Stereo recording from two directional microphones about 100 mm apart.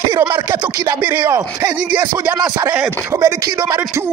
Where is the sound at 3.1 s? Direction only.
30° right (ahead or behind).